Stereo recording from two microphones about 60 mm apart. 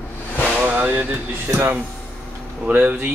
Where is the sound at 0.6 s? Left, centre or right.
Right.